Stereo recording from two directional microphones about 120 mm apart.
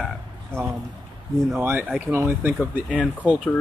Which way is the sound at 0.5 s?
20° right (ahead or behind).